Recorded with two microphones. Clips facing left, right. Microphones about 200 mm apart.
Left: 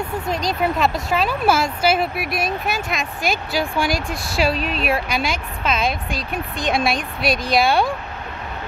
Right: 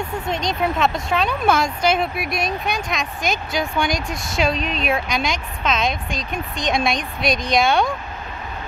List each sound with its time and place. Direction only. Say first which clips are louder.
0.3 s a woman's voice: left 1 dB; centre (ahead or behind)